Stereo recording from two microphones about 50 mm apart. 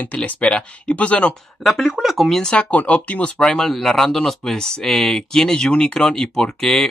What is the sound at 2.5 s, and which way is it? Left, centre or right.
Speech, left.